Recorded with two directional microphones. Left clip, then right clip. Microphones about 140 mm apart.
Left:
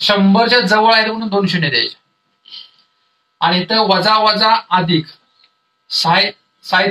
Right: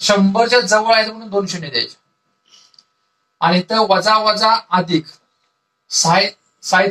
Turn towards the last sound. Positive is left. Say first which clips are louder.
# even
turn(degrees=20)  # may be behind; listen again after turning